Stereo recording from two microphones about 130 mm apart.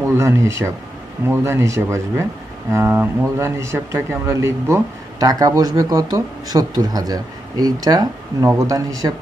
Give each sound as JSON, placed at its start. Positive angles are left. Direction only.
{"t": 0.2, "sound": "speech", "side_deg": -20}